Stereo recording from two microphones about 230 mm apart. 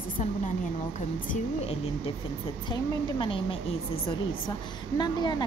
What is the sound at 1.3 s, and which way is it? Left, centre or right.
A woman's voice, left.